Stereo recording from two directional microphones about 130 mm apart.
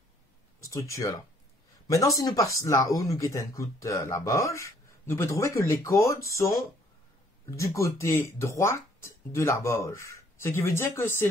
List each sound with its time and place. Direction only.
0.6 s speech: 25° left (ahead or behind)